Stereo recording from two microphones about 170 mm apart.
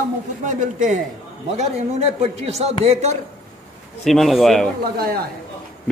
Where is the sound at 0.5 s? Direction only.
45° right (ahead or behind).